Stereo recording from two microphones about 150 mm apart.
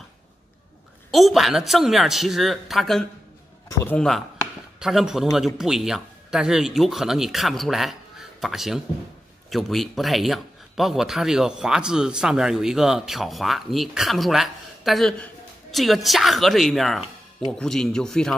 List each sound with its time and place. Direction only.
1.1 s speech: centre (ahead or behind)
3.6 s speech: 20° left (ahead or behind)
3.9 s speech: centre (ahead or behind)